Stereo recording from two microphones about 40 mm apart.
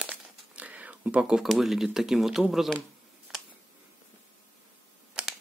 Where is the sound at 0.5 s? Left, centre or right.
Right.